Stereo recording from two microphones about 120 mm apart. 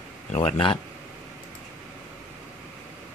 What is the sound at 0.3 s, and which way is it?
Speech, 50° left (ahead or behind).